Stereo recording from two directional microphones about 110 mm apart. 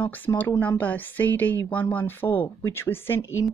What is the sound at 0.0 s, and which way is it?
A woman's voice, 15° left (ahead or behind).